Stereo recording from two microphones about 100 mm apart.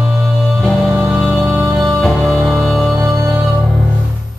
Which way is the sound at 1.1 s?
5° right (ahead or behind).